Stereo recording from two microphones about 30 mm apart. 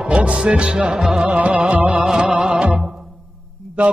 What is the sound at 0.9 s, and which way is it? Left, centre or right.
Mantra, right.